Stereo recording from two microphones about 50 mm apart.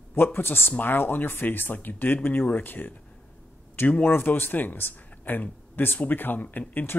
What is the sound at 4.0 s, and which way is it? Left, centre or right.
Speech, left.